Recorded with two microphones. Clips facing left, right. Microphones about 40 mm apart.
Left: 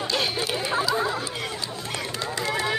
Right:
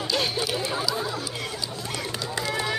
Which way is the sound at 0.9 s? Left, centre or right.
Left.